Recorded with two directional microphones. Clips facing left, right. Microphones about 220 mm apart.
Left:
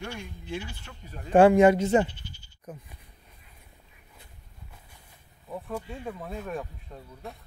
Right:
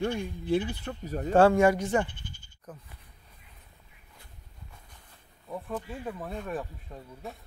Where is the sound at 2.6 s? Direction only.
15° left (ahead or behind).